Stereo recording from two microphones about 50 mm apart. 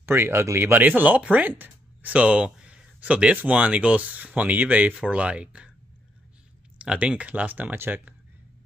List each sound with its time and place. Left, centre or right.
0.0 s speech: right
0.6 s speech: right
4.9 s speech: right
6.8 s speech: right
7.7 s speech: right